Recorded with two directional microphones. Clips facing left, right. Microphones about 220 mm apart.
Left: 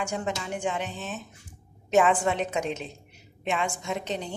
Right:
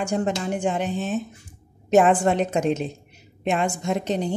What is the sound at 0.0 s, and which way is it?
A woman's voice, 40° right (ahead or behind).